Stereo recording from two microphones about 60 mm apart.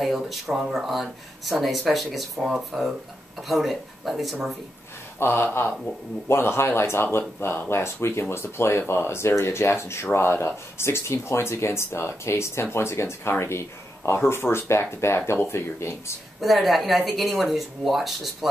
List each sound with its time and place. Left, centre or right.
0.0 s speech: centre
5.2 s speech: left
16.3 s speech: centre